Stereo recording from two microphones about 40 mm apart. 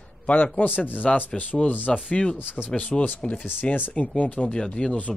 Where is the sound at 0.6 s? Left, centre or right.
Left.